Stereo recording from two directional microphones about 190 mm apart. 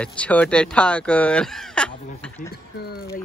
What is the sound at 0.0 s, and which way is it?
Speech, 5° left (ahead or behind).